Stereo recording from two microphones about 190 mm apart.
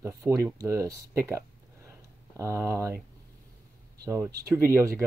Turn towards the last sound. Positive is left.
turn(degrees=-15)  # may be behind; listen again after turning